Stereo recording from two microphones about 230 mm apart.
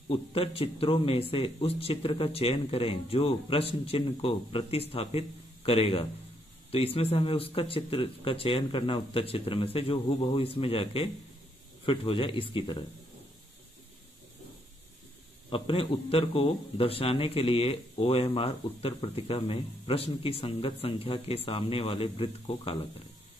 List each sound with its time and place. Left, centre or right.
0.1 s a man's voice: left
15.5 s a man's voice: left